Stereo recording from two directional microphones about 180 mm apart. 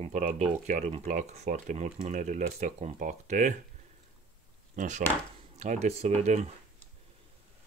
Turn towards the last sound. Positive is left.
turn(degrees=-35)  # may be behind; listen again after turning